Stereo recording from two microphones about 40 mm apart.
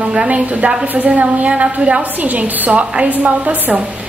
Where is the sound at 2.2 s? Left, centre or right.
Right.